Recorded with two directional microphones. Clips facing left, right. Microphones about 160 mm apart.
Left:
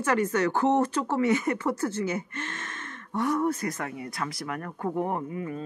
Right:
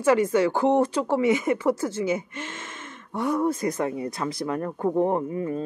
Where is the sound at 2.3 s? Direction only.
10° right (ahead or behind).